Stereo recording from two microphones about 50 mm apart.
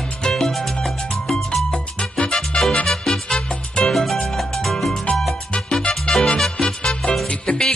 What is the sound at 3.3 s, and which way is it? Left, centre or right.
Music, centre.